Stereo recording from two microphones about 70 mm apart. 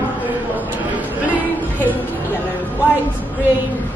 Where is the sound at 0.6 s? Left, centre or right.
Right.